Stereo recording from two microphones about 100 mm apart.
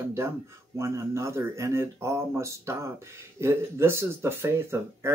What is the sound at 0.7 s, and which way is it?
Speech, 30° right (ahead or behind).